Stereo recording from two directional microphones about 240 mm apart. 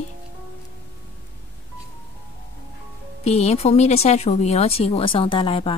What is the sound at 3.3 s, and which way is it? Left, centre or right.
Speech, left.